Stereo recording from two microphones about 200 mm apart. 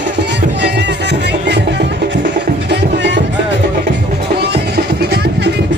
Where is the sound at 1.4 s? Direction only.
60° right (ahead or behind).